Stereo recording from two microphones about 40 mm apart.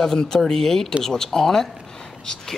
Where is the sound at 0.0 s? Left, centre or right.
Centre.